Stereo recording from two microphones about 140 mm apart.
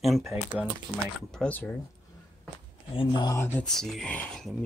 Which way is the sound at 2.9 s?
30° left (ahead or behind).